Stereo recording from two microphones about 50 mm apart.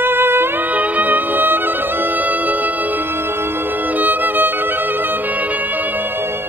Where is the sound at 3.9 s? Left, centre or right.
Right.